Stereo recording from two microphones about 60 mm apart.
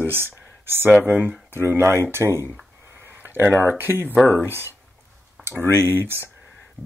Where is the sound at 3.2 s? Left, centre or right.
Right.